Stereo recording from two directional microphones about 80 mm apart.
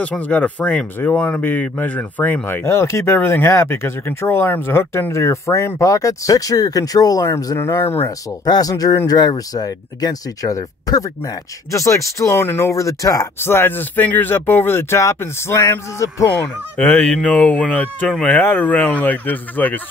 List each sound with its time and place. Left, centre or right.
0.0 s speech: centre; by 7.2 s left
7.5 s speech: left
8.5 s speech: left
13.4 s speech: left
16.7 s fowl: centre
18.2 s speech: left